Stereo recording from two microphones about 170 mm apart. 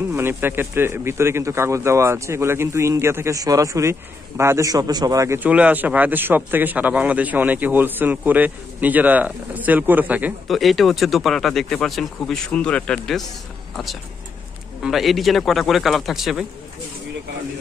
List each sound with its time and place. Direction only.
0.1 s a man's voice: 15° right (ahead or behind); by 13.2 s 5° left (ahead or behind)
14.8 s a man's voice: centre (ahead or behind)